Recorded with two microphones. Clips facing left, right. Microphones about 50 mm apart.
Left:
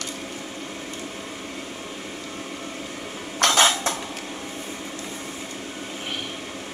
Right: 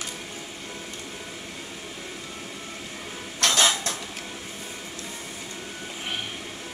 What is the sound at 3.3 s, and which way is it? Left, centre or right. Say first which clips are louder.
Dishes: left 4 dB; left.